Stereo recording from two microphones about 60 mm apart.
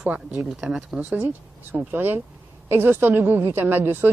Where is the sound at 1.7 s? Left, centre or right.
Right.